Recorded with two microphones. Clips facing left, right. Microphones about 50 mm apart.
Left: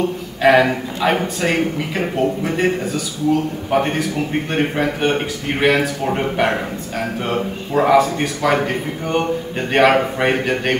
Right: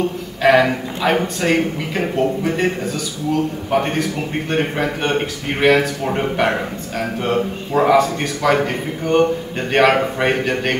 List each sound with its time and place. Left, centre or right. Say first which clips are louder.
0.4 s a man's voice: even; centre